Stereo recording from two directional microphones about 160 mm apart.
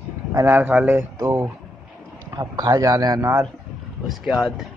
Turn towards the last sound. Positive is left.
turn(degrees=0)  # may be behind; listen again after turning